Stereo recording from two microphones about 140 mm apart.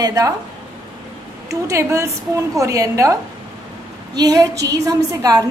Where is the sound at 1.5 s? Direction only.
20° right (ahead or behind).